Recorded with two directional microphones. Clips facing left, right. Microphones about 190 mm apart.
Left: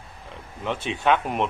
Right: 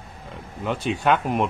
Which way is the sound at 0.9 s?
Centre (ahead or behind).